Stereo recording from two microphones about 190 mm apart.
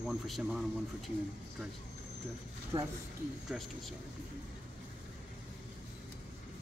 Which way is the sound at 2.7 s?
25° right (ahead or behind).